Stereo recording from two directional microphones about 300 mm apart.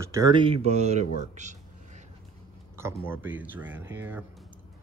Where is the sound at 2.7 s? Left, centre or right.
Centre.